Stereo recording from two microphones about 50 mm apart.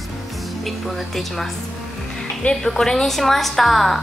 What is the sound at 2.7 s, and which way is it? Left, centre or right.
A woman's voice, centre.